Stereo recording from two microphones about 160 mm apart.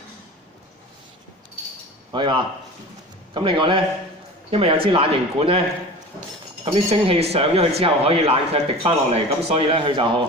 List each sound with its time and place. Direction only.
2.1 s speech: 30° right (ahead or behind)
6.6 s speech: 40° right (ahead or behind)